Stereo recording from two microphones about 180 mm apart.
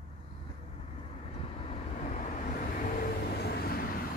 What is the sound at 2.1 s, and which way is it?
Vehicle, 45° left (ahead or behind).